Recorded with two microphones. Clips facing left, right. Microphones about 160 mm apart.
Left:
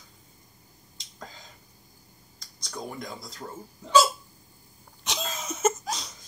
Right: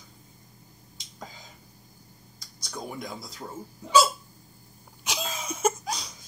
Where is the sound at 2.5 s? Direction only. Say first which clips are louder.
Even; 5° right (ahead or behind).